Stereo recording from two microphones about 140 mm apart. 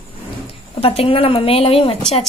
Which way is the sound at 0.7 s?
45° left (ahead or behind).